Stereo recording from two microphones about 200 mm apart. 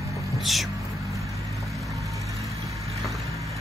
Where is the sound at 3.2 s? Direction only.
15° right (ahead or behind).